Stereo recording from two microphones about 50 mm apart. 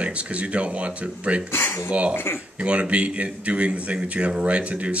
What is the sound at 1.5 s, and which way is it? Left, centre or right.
Speech, left.